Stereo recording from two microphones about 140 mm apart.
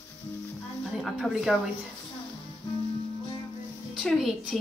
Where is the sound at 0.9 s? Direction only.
Centre (ahead or behind).